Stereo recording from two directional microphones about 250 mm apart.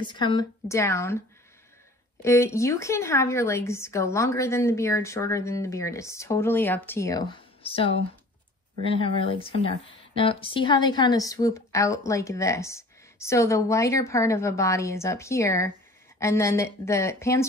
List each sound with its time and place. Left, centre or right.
0.0 s a woman's voice: centre
2.2 s a woman's voice: centre